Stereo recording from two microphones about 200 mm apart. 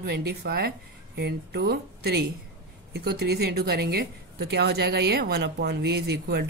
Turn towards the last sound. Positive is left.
turn(degrees=-55)  # may be behind; listen again after turning